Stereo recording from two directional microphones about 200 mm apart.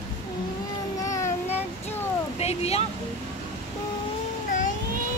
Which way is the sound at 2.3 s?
30° left (ahead or behind).